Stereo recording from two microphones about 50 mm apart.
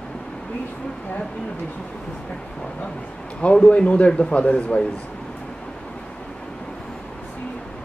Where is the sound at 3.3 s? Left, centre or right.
Left.